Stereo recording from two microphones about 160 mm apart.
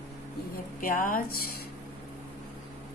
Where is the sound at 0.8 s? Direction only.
60° left (ahead or behind).